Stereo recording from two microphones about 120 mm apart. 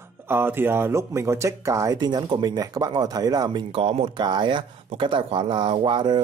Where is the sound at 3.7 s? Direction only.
55° right (ahead or behind).